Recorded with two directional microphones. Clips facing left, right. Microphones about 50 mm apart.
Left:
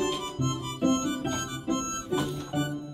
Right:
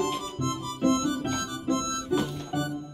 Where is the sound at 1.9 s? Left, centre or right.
Left.